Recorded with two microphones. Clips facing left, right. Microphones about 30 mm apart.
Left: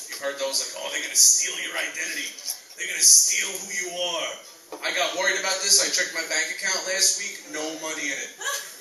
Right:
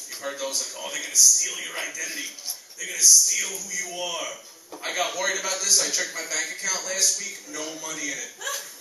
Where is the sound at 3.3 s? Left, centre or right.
Left.